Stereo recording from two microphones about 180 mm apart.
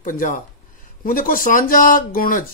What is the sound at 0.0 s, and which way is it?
A man's voice, 50° left (ahead or behind).